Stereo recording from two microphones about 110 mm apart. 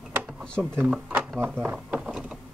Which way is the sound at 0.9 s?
5° right (ahead or behind).